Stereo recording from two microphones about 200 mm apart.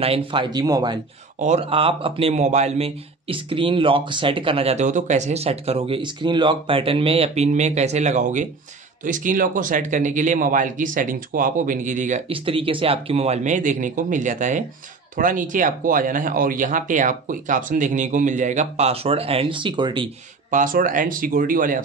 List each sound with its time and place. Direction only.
0.0 s speech: 25° right (ahead or behind)
1.4 s speech: 30° right (ahead or behind)
12.3 s speech: 25° right (ahead or behind)
20.5 s speech: 40° right (ahead or behind)